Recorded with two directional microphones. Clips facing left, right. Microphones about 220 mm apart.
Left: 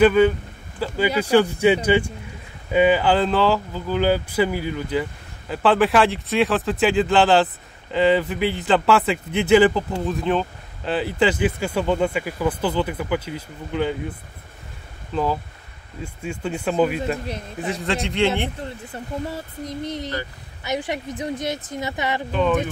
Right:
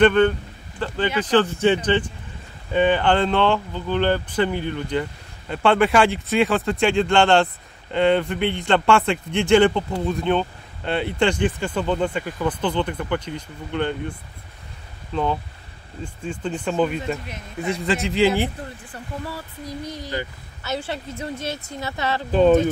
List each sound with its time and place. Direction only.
0.0 s a woman's voice: 5° left (ahead or behind)
16.0 s a woman's voice: 10° left (ahead or behind)
18.9 s a woman's voice: 20° left (ahead or behind)
22.3 s speech: 35° right (ahead or behind)